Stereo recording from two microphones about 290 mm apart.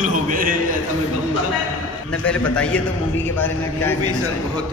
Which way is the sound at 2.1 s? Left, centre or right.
Centre.